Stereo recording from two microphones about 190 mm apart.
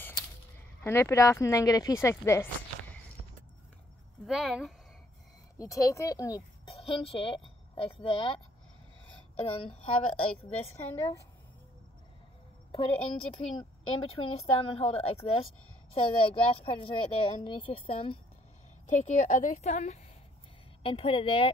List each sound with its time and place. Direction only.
0.8 s speech: 15° left (ahead or behind)
4.3 s speech: centre (ahead or behind)
5.6 s speech: 15° left (ahead or behind)
6.7 s speech: 30° left (ahead or behind)
9.4 s a woman's voice: 30° left (ahead or behind)
12.7 s a woman's voice: 30° left (ahead or behind)
18.9 s a woman's voice: 40° left (ahead or behind)